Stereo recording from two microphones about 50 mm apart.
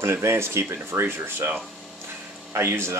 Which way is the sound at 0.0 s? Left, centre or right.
Right.